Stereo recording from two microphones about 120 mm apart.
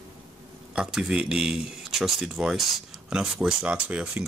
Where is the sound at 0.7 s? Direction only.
5° right (ahead or behind).